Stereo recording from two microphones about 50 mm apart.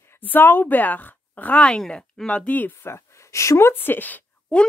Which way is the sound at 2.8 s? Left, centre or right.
Left.